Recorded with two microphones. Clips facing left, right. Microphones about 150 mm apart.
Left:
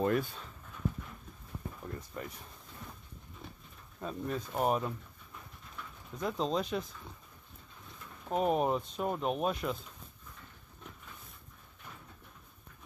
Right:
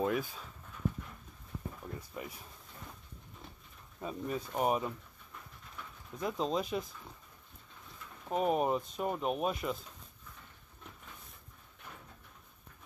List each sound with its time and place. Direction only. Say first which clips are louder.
0.0 s speech: left 2 dB; 5° right (ahead or behind)
2.0 s speech: left 1 dB; 5° right (ahead or behind)
4.0 s speech: left 1 dB; 5° right (ahead or behind)
6.1 s speech: left 1 dB; centre (ahead or behind)
8.3 s speech: left 1 dB; centre (ahead or behind)